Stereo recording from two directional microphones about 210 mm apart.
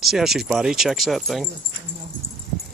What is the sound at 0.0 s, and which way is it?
Speech, centre (ahead or behind).